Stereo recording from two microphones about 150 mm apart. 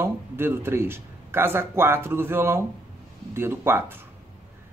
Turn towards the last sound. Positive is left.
turn(degrees=-15)  # may be behind; listen again after turning